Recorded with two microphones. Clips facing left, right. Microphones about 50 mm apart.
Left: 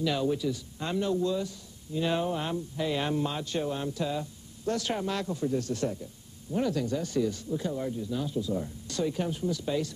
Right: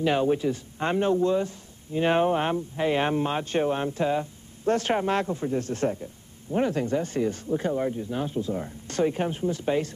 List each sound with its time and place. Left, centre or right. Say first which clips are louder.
0.0 s speech: right 5 dB; right